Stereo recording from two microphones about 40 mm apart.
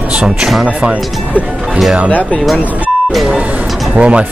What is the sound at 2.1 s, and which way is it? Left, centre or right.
Speech, left.